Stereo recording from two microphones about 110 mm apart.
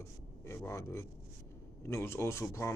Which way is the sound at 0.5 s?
25° left (ahead or behind).